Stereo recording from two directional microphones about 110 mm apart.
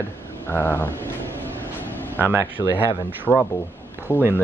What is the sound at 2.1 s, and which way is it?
Speech, 15° right (ahead or behind).